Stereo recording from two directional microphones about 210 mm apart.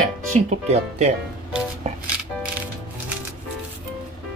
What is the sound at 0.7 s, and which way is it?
Speech, 30° right (ahead or behind).